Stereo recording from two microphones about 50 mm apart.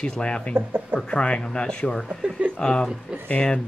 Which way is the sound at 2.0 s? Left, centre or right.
Right.